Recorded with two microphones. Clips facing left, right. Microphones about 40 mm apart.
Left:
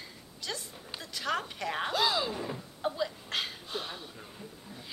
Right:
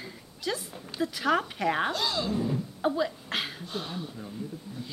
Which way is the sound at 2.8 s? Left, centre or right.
Centre.